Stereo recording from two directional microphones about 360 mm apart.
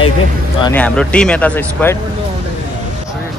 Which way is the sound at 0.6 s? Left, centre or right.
Centre.